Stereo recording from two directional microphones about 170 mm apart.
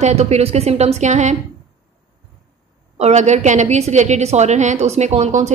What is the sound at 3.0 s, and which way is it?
A woman's voice, 45° right (ahead or behind).